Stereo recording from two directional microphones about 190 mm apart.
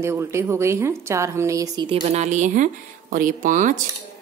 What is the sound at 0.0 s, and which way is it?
A woman's voice, 15° right (ahead or behind).